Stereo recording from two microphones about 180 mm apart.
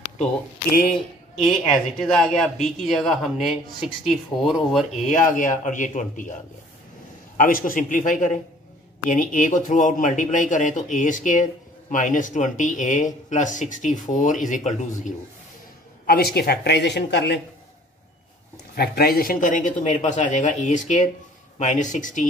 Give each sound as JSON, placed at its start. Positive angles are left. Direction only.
{"t": 0.7, "sound": "speech", "side_deg": 50}
{"t": 2.0, "sound": "speech", "side_deg": 5}
{"t": 5.0, "sound": "speech", "side_deg": 45}
{"t": 7.3, "sound": "speech", "side_deg": 50}
{"t": 16.1, "sound": "speech", "side_deg": 60}
{"t": 18.8, "sound": "speech", "side_deg": 55}